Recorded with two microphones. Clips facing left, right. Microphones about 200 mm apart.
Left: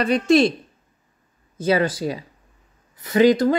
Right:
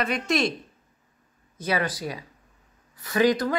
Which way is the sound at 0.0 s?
30° left (ahead or behind).